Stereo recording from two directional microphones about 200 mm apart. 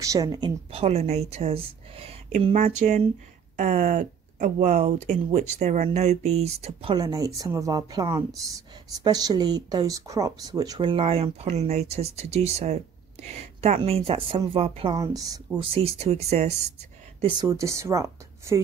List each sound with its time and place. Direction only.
0.0 s speech: 15° right (ahead or behind)
15.0 s speech: 15° right (ahead or behind); by 16.5 s 35° right (ahead or behind)
17.2 s speech: 20° right (ahead or behind)